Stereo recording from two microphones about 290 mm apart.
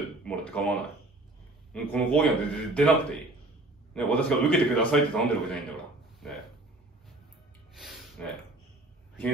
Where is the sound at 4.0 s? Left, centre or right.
Centre.